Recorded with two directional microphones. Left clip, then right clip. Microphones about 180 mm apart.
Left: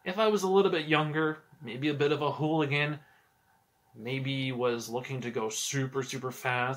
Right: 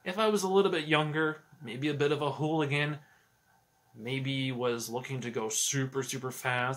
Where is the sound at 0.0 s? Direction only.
10° right (ahead or behind).